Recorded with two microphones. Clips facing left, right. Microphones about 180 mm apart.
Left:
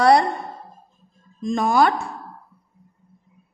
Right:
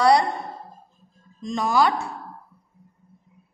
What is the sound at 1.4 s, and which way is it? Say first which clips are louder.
Speech: left 3 dB; 50° left (ahead or behind).